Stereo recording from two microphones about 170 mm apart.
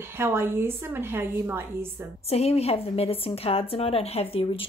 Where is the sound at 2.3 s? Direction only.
35° left (ahead or behind).